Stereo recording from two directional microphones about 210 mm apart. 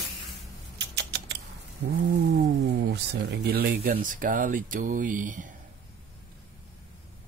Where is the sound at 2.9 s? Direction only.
55° right (ahead or behind).